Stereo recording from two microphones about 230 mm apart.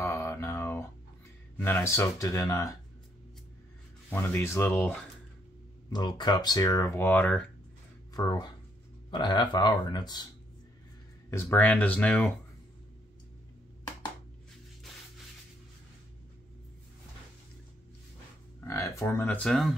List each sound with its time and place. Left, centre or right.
0.0 s mantra: centre
1.6 s speech: centre
4.1 s speech: centre
8.1 s speech: centre
11.2 s speech: centre
18.6 s speech: centre